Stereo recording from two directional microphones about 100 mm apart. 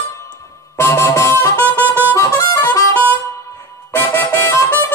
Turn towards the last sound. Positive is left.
turn(degrees=25)  # may be behind; listen again after turning